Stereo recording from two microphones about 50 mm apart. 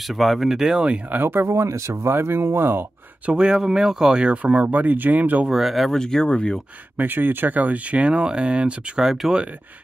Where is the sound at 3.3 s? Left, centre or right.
Centre; by 5.4 s right.